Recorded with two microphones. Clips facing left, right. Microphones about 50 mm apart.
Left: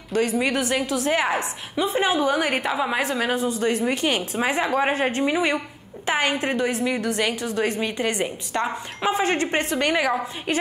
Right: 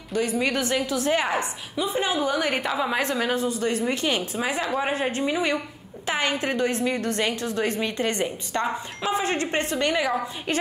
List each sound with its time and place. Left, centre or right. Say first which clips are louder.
0.4 s a woman's voice: left 1 dB; left
1.8 s a woman's voice: left 3 dB; left
2.1 s a woman's voice: left 3 dB; centre
3.3 s a woman's voice: left 2 dB; left
7.8 s a woman's voice: left 1 dB; centre
9.0 s a woman's voice: left 3 dB; left